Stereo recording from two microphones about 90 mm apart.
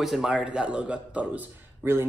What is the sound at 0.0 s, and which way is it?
A man's voice, 5° right (ahead or behind).